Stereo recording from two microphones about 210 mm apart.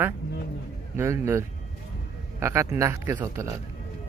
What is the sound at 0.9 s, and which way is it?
Speech, 15° right (ahead or behind).